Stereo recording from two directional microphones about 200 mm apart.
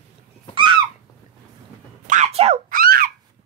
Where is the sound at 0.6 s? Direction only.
25° right (ahead or behind).